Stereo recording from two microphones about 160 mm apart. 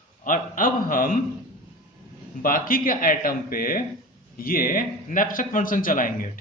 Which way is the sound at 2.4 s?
65° left (ahead or behind).